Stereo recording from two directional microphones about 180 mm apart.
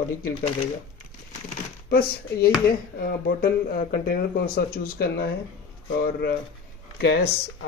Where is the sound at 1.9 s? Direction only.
60° left (ahead or behind).